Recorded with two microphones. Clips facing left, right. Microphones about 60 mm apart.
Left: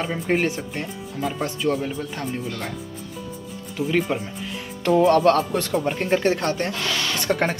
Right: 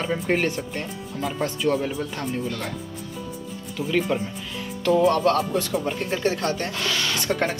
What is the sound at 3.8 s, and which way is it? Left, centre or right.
Speech, centre.